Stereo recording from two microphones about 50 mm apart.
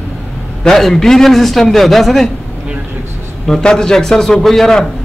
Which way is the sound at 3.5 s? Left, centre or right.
Centre.